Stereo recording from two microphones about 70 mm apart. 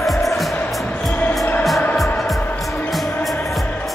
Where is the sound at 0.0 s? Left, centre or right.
Centre.